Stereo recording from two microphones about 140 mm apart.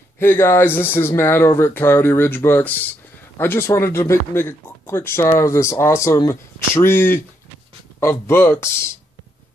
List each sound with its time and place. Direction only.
0.2 s speech: 15° left (ahead or behind)